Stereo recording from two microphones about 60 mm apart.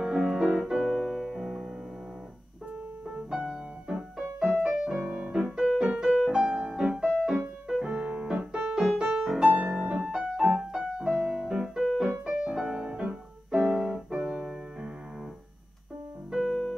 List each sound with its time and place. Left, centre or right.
0.0 s music: centre
3.2 s music: centre
4.2 s music: centre
7.1 s piano: centre
9.3 s music: centre
9.7 s music: centre
10.1 s piano: centre
12.0 s music: centre
16.3 s keyboard: centre